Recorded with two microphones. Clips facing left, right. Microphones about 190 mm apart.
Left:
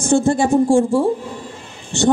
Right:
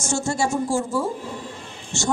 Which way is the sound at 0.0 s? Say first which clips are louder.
Left 9 dB; 55° left (ahead or behind).